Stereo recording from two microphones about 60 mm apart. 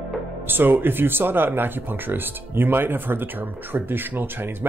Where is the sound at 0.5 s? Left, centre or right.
Right.